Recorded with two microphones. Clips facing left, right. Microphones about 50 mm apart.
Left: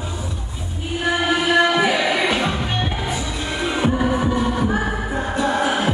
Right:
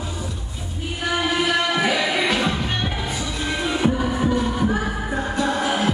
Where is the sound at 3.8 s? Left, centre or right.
Centre.